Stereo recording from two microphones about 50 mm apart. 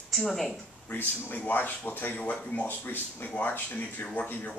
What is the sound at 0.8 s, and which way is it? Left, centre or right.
A man's voice, left.